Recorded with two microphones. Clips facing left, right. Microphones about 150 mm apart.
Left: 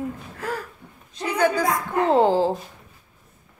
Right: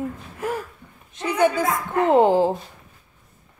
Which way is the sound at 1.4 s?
20° right (ahead or behind).